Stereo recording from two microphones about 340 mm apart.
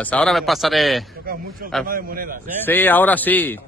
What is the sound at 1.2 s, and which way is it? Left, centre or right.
A man's voice, right.